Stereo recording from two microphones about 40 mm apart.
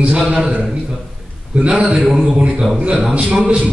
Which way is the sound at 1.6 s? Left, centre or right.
Right.